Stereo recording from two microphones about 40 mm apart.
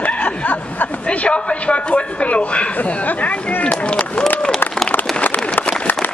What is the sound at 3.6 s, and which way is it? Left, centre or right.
Run, left.